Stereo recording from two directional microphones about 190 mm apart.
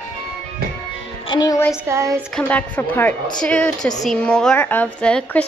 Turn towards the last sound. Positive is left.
turn(degrees=5)  # may be behind; listen again after turning